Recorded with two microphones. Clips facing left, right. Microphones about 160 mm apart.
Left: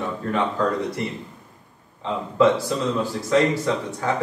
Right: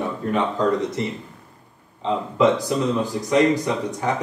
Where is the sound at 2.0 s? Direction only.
15° right (ahead or behind).